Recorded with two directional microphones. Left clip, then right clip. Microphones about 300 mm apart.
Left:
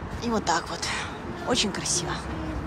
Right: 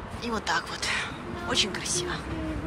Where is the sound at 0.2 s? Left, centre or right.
Centre.